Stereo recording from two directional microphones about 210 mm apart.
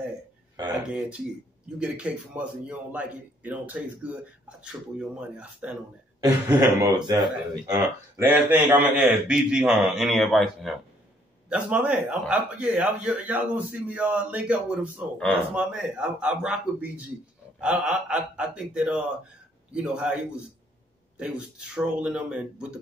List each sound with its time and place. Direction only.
0.8 s a man's voice: 5° right (ahead or behind)
8.2 s a man's voice: 10° right (ahead or behind)
21.2 s a man's voice: 5° right (ahead or behind)